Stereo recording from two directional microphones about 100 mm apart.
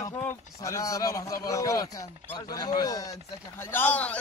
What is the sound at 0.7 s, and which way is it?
A man's voice, 35° left (ahead or behind).